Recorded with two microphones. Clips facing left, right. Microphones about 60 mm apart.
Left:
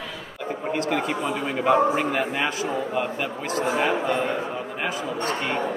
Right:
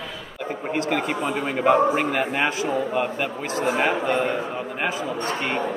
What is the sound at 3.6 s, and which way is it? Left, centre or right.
A man's voice, right.